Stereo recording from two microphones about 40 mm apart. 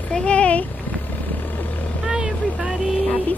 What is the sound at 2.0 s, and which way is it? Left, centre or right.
Vehicle, right.